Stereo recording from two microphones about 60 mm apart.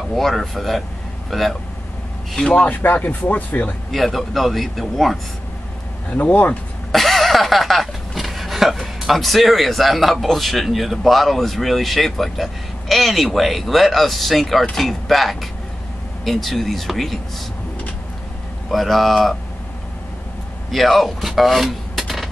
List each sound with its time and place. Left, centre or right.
0.1 s speech: centre
2.4 s speech: centre
2.8 s speech: left
3.9 s speech: centre
6.0 s speech: left
6.9 s speech: centre
18.7 s speech: centre
20.7 s speech: centre